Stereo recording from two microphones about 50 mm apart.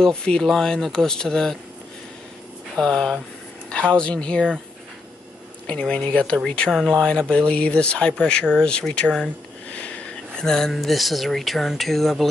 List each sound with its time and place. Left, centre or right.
0.0 s speech: centre
2.8 s speech: centre
3.9 s speech: left
5.7 s speech: left
7.3 s speech: left
9.7 s sniff: left
10.4 s speech: centre